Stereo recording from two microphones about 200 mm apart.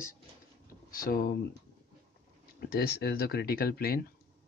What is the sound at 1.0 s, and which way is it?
Speech, 45° left (ahead or behind).